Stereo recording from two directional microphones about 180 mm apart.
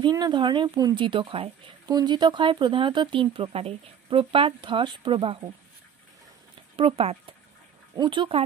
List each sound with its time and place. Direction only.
0.0 s speech: 25° right (ahead or behind)
6.8 s speech: 30° right (ahead or behind)